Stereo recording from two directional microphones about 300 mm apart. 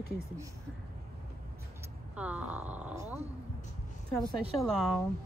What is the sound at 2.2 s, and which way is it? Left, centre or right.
Speech, centre.